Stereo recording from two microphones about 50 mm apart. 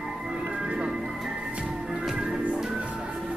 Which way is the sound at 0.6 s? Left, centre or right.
Centre.